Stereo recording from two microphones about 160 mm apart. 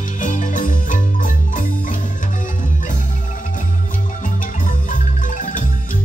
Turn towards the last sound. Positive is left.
turn(degrees=55)  # may be behind; listen again after turning